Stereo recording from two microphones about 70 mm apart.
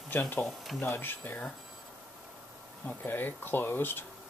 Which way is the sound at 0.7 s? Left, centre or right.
Left.